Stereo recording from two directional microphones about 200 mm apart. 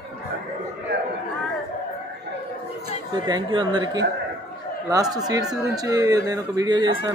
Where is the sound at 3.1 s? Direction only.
20° right (ahead or behind).